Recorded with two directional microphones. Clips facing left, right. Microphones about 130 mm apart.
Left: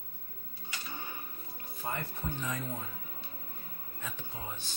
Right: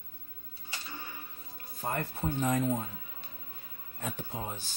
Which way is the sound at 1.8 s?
40° right (ahead or behind).